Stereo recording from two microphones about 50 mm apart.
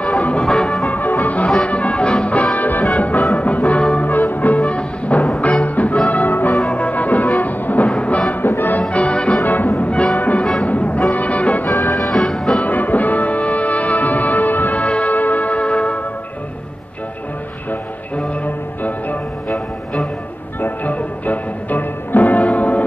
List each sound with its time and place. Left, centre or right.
0.0 s music: left
0.8 s music: left
4.1 s music: left
7.9 s music: left
8.4 s music: left
8.8 s music: left
9.4 s music: left
9.8 s music: left
11.9 s music: centre
12.6 s music: left
18.1 s music: left
20.6 s music: left